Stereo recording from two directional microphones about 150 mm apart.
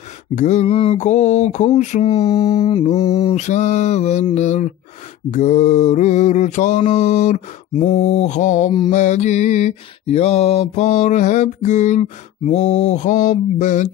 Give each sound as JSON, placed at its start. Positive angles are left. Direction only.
{"t": 0.4, "sound": "mantra", "side_deg": 50}
{"t": 2.8, "sound": "mantra", "side_deg": 45}